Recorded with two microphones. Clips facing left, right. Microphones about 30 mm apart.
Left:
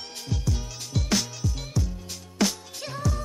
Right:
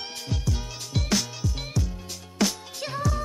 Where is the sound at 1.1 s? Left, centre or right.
Centre.